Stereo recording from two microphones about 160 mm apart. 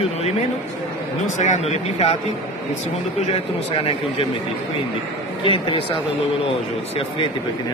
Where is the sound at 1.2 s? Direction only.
45° left (ahead or behind).